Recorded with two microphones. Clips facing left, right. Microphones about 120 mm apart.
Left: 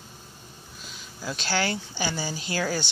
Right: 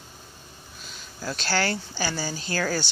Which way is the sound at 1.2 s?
15° left (ahead or behind).